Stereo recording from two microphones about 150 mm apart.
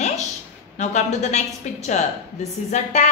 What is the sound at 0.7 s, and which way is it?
A woman's voice, 50° left (ahead or behind).